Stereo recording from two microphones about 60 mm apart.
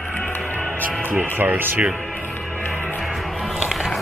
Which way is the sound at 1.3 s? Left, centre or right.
Right.